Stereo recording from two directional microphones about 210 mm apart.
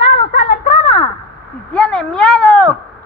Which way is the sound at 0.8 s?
25° left (ahead or behind).